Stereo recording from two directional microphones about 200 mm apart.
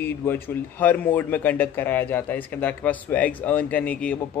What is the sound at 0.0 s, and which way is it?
A man's voice, 10° left (ahead or behind).